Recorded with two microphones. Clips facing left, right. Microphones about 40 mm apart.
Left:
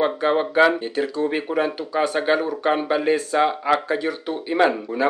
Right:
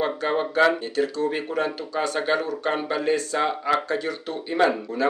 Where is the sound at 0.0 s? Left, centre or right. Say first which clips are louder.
Left 4 dB; centre.